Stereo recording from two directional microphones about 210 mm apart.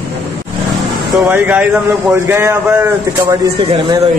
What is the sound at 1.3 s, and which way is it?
Speech, 10° right (ahead or behind).